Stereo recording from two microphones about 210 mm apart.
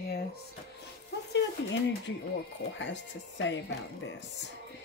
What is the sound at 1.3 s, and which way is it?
Speech, 60° left (ahead or behind).